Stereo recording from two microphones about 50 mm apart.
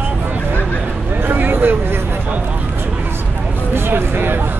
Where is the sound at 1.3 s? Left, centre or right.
Right.